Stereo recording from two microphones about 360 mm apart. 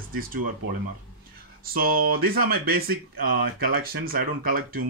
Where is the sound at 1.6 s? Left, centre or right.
Right.